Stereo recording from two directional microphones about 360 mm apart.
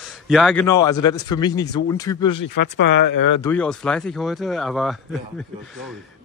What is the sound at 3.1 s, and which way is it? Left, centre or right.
Speech, left.